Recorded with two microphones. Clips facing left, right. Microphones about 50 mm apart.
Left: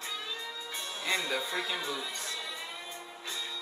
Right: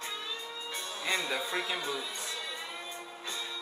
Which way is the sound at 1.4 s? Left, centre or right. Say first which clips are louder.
Right 1 dB; right.